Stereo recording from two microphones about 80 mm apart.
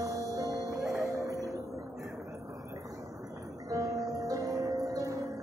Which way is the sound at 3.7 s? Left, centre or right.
Right.